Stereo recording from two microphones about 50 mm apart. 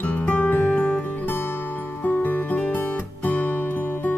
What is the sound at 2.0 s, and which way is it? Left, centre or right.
Music, left.